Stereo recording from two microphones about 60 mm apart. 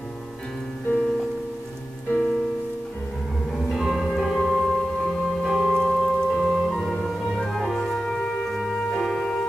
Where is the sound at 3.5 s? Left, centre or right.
Centre.